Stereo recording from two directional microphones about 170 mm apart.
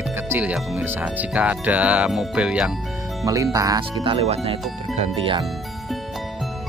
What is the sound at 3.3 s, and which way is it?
Speech, 20° right (ahead or behind).